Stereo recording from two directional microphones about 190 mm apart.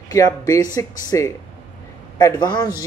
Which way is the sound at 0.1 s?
15° left (ahead or behind).